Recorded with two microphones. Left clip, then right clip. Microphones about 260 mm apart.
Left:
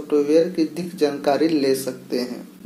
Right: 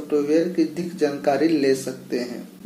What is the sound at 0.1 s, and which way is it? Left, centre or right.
Speech, left.